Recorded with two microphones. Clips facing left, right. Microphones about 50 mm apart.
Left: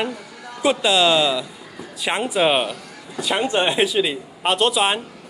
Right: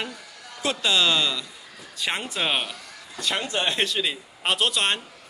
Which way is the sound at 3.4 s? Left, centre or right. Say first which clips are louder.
Left 9 dB; left.